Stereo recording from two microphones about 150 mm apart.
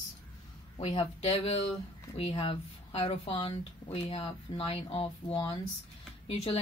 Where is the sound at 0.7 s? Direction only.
40° left (ahead or behind).